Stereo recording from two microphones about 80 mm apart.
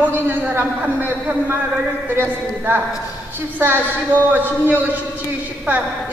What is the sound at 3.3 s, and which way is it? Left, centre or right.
A man's voice, right.